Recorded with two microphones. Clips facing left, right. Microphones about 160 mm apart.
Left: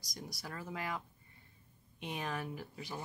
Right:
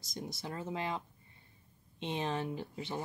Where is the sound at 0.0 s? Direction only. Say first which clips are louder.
Right 5 dB; 25° right (ahead or behind).